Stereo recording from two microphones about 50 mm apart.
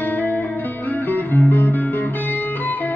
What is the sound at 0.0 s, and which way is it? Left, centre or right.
Music, left.